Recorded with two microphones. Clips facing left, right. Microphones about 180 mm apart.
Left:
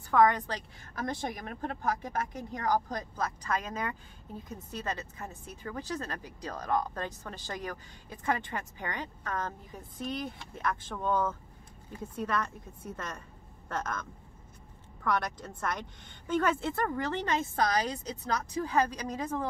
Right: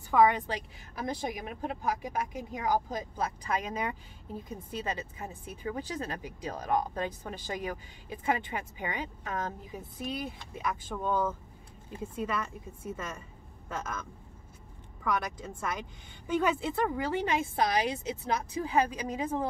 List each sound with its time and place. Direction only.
0.1 s speech: 10° right (ahead or behind)
15.0 s speech: 10° right (ahead or behind)